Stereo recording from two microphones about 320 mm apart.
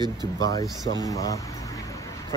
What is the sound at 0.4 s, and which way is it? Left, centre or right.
Speech, centre.